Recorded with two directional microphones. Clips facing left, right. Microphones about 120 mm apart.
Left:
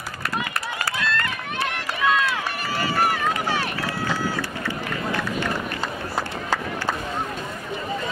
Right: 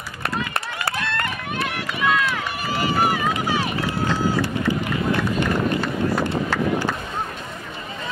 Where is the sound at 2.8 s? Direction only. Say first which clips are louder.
Right 2 dB; 15° right (ahead or behind).